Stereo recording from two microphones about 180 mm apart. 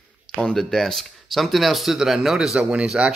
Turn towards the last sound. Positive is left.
turn(degrees=-5)  # may be behind; listen again after turning